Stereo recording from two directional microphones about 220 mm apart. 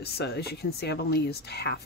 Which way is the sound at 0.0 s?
45° left (ahead or behind).